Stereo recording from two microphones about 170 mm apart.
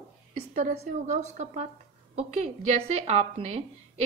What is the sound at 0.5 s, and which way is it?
A woman's voice, 50° right (ahead or behind).